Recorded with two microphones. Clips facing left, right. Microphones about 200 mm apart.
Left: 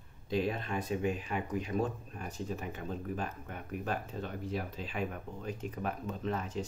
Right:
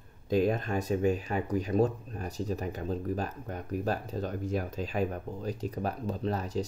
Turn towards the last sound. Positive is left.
turn(degrees=-35)  # may be behind; listen again after turning